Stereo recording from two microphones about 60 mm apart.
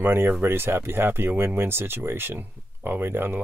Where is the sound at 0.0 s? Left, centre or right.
Right.